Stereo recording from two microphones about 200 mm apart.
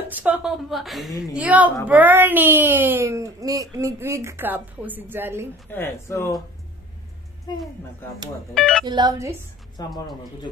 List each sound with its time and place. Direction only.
0.1 s a woman's voice: 5° right (ahead or behind)
5.7 s speech: 10° left (ahead or behind)
7.5 s speech: 20° left (ahead or behind)
8.5 s a woman's voice: 5° left (ahead or behind)
8.8 s speech: 20° right (ahead or behind)
9.8 s speech: 20° left (ahead or behind)